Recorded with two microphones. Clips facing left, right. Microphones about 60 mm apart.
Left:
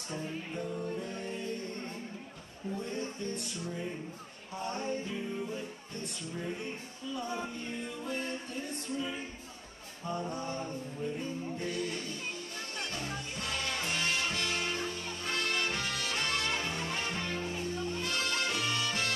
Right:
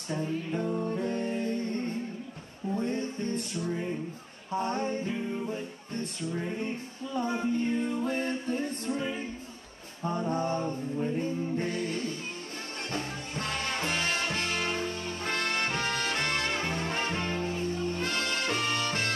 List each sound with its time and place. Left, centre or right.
0.1 s music: right
2.8 s music: right
7.2 s music: right